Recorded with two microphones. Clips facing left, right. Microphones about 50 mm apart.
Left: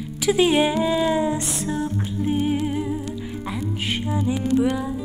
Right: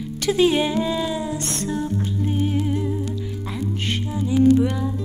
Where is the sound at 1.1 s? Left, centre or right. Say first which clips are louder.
Left 5 dB; left.